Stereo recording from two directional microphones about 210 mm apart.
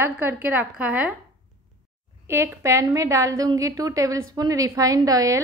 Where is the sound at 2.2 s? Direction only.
15° right (ahead or behind).